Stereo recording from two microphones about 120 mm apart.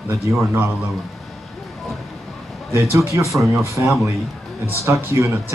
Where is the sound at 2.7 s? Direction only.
20° right (ahead or behind).